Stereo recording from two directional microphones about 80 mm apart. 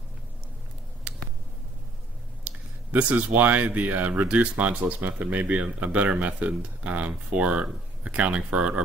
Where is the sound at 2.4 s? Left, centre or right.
Centre.